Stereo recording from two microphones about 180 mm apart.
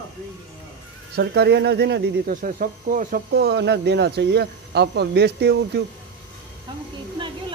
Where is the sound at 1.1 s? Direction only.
65° right (ahead or behind).